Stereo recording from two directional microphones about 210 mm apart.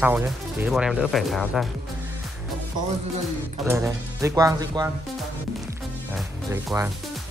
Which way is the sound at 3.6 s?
15° right (ahead or behind).